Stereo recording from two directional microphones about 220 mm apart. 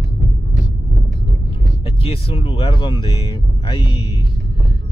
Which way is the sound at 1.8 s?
25° left (ahead or behind).